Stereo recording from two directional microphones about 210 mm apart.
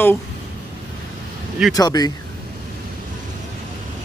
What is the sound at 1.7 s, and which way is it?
Speech, 20° left (ahead or behind).